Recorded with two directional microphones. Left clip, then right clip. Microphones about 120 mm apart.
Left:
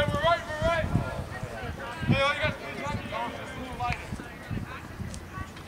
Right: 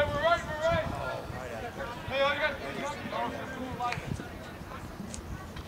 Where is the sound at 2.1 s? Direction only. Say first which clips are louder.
Left 2 dB; 15° left (ahead or behind).